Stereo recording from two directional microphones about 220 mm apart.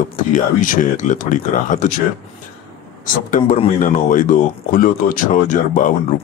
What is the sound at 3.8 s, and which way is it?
Speech, 35° left (ahead or behind).